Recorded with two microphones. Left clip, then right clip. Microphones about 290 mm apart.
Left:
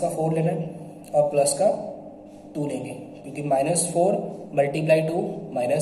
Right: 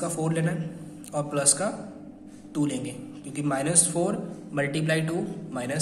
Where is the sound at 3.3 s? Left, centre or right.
Right.